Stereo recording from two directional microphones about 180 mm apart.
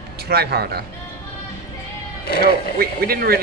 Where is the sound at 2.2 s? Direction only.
60° left (ahead or behind).